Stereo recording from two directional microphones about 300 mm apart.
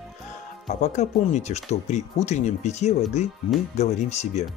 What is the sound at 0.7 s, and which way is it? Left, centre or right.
Speech, left.